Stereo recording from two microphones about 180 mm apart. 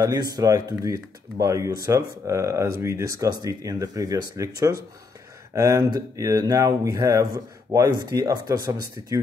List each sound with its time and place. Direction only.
0.4 s speech: 20° right (ahead or behind)